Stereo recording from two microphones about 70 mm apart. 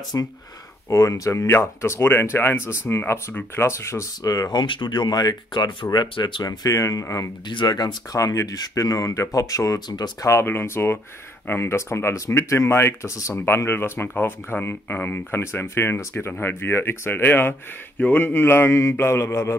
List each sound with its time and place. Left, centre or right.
0.1 s speech: left
4.2 s speech: left
6.8 s speech: left
7.4 s speech: left
8.2 s speech: left
9.8 s speech: left
10.4 s speech: left
13.3 s speech: left